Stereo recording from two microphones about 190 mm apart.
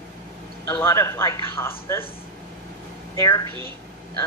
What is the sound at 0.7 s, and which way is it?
Speech, 15° left (ahead or behind).